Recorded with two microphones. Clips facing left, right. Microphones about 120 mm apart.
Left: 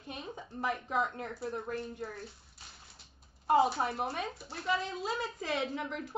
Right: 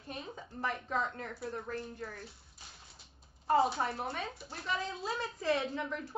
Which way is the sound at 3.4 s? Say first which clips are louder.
Left 2 dB; 10° left (ahead or behind).